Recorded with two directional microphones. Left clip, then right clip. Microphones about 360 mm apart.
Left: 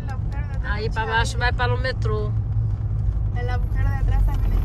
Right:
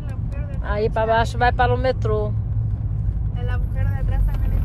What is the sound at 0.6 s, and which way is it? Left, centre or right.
Speech, centre.